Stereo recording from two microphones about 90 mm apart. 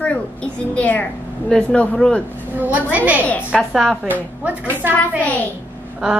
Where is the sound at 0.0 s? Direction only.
15° left (ahead or behind).